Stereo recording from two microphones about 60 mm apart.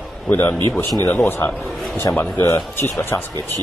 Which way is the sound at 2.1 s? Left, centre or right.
Left.